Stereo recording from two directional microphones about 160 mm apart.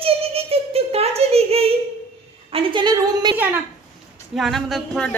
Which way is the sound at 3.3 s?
10° right (ahead or behind).